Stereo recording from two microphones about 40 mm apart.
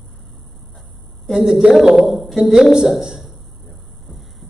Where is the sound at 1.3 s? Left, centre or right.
Centre.